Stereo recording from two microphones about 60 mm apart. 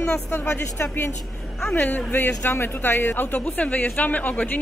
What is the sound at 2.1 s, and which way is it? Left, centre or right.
A man's voice, left.